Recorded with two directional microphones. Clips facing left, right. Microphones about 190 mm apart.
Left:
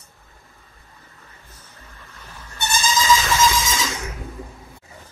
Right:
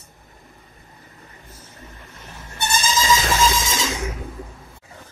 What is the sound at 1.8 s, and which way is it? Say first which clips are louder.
Goat: right 2 dB; 25° right (ahead or behind).